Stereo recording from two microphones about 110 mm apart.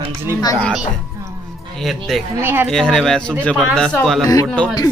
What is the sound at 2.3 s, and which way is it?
Speech, 20° right (ahead or behind).